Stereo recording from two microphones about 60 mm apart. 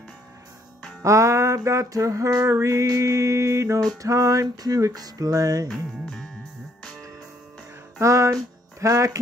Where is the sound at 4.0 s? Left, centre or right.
Right.